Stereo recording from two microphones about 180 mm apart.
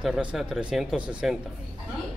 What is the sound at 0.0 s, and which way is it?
Speech, 5° right (ahead or behind).